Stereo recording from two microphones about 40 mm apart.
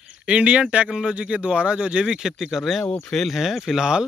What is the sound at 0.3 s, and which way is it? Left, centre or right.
Speech, right.